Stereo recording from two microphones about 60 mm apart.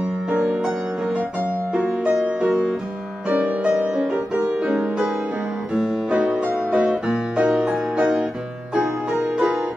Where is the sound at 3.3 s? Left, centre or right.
Right.